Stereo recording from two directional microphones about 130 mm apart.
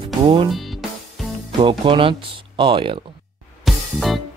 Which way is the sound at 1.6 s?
40° right (ahead or behind).